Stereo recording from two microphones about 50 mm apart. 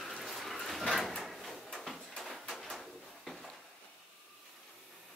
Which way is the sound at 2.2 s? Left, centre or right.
Centre.